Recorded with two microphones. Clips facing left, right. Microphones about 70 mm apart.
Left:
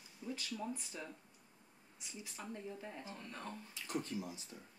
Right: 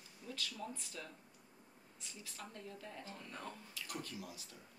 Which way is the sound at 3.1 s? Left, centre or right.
Centre.